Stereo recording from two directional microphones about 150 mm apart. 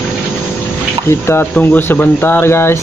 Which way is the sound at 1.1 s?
15° left (ahead or behind).